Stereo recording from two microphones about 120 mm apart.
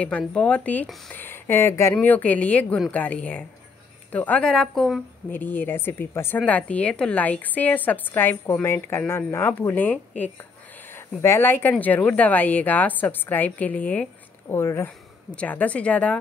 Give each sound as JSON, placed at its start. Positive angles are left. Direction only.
{"t": 0.3, "sound": "a woman's voice", "side_deg": 10}
{"t": 2.0, "sound": "a woman's voice", "side_deg": 15}
{"t": 5.3, "sound": "a woman's voice", "side_deg": 15}